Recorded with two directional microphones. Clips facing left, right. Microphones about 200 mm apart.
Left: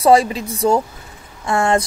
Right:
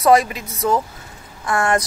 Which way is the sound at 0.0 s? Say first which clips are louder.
Left 2 dB; 30° left (ahead or behind).